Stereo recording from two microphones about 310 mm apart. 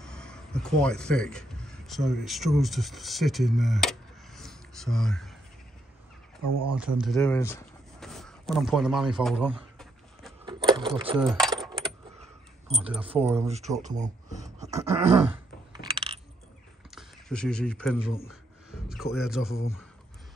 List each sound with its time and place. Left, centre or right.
0.0 s speech: centre
6.4 s speech: right
6.8 s a sound: centre
10.4 s keys jangling: centre
11.1 s keys jangling: centre
12.7 s speech: centre
13.8 s speech: right
14.6 s a sound: centre
16.9 s speech: centre
18.3 s a sound: centre
19.1 s speech: centre